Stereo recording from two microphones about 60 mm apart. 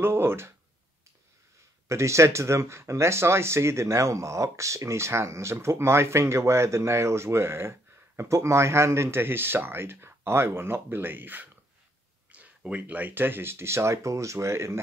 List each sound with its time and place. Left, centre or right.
0.0 s speech: right
1.9 s speech: right